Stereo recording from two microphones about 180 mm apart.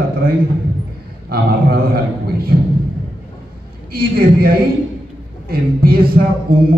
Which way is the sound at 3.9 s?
60° right (ahead or behind).